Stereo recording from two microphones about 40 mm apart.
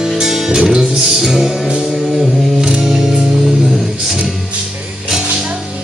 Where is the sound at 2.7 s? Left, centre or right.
Right.